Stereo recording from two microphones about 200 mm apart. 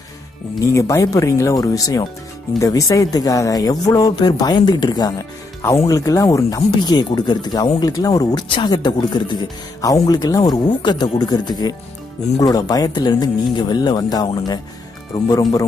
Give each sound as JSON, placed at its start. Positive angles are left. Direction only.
{"t": 0.7, "sound": "speech", "side_deg": 15}